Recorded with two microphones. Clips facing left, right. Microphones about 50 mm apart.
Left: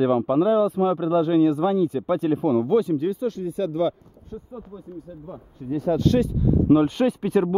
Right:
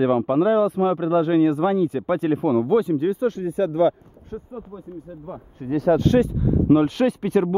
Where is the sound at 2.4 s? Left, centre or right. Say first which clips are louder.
Right 1 dB; centre.